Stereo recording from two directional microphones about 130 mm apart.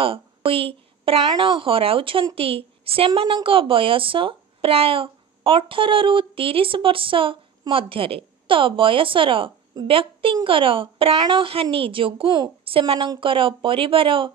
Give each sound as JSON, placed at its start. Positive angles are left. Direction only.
{"t": 0.0, "sound": "a woman's voice", "side_deg": -45}